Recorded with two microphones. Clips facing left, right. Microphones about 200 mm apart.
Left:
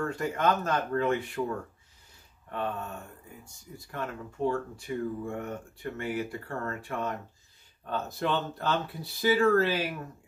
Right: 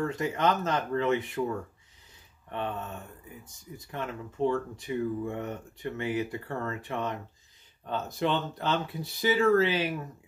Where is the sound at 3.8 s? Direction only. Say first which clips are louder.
Even; 20° right (ahead or behind).